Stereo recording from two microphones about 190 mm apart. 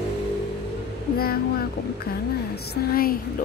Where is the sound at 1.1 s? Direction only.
50° left (ahead or behind).